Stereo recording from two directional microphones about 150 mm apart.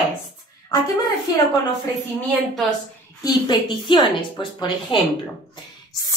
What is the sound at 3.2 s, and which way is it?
A woman's voice, 30° left (ahead or behind).